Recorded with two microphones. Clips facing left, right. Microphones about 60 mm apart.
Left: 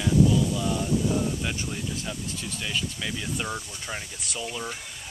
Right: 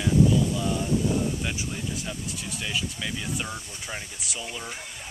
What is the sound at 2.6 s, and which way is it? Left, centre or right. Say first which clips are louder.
Speech: even; centre.